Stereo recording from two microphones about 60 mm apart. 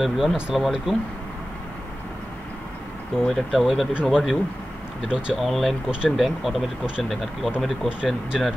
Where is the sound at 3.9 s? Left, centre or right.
Centre.